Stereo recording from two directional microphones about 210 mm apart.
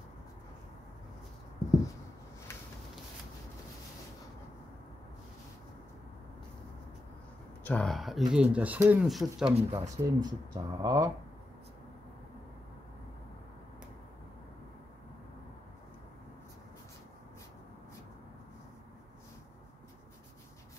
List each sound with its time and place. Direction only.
7.6 s speech: 5° left (ahead or behind)
9.6 s speech: 25° right (ahead or behind)